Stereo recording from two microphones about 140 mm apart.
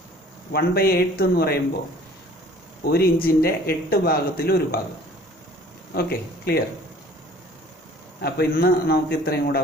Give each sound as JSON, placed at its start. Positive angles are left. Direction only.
{"t": 0.5, "sound": "speech", "side_deg": 90}
{"t": 2.8, "sound": "speech", "side_deg": 90}
{"t": 5.9, "sound": "speech", "side_deg": 90}
{"t": 8.4, "sound": "speech", "side_deg": 90}